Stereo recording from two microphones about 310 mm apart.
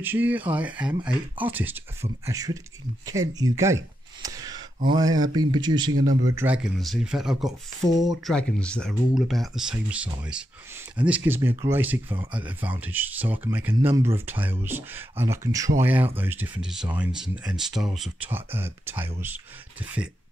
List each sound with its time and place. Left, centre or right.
0.0 s speech: centre
5.3 s speech: right
5.6 s speech: centre